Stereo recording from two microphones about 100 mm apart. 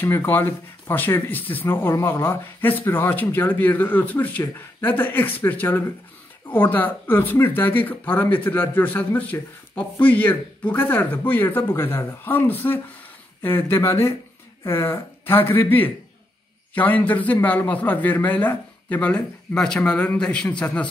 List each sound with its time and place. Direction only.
0.0 s a man's voice: 20° left (ahead or behind)